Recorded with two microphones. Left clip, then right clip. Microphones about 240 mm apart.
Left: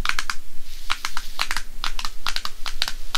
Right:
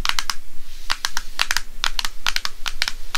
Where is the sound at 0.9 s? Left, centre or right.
Centre.